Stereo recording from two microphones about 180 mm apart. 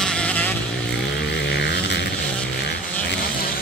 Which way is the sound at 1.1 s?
70° left (ahead or behind).